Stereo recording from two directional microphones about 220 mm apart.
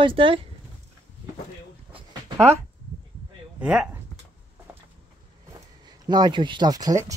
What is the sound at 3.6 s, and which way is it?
Speech, 5° right (ahead or behind).